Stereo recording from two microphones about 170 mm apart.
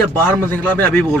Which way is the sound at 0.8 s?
10° left (ahead or behind).